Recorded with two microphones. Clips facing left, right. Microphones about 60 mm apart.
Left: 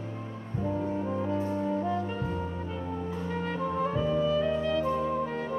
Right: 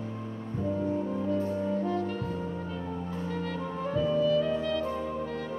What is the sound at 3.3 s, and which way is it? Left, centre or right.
Music, left.